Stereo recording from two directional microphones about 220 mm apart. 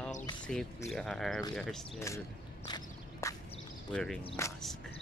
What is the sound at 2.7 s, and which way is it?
Walk, 15° left (ahead or behind).